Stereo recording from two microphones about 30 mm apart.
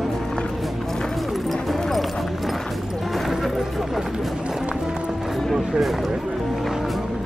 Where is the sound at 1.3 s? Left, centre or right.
Centre.